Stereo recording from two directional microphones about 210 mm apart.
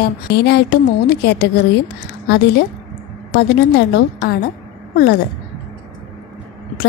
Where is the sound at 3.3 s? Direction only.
55° left (ahead or behind).